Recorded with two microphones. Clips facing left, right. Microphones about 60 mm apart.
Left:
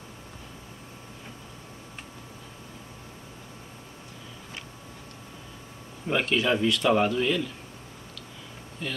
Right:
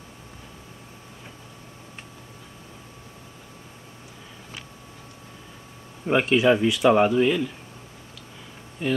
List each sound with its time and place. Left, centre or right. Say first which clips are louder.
6.0 s speech: right 6 dB; centre
8.8 s speech: right 9 dB; centre